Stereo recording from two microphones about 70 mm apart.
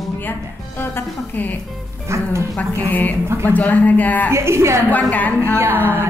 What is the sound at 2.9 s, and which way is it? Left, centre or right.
Speech, left.